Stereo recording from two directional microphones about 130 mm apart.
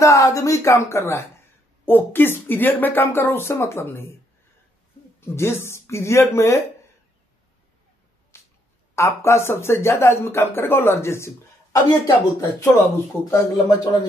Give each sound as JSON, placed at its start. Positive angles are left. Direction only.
{"t": 0.0, "sound": "speech", "side_deg": 25}
{"t": 5.2, "sound": "speech", "side_deg": 20}
{"t": 8.3, "sound": "a sound", "side_deg": 20}
{"t": 8.9, "sound": "speech", "side_deg": 20}